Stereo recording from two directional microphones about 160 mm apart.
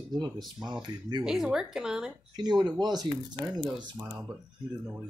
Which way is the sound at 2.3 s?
25° right (ahead or behind).